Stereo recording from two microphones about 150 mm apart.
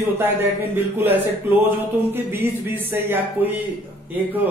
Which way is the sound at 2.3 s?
15° right (ahead or behind).